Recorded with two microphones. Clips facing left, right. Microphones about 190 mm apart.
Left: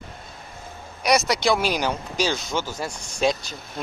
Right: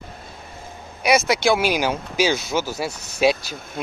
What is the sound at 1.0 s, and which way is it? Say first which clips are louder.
Speech: right 2 dB; 5° right (ahead or behind).